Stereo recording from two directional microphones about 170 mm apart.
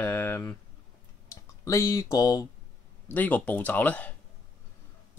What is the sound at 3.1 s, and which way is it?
Speech, 10° left (ahead or behind).